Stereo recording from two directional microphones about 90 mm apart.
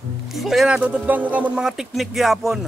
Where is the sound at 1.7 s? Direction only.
5° right (ahead or behind).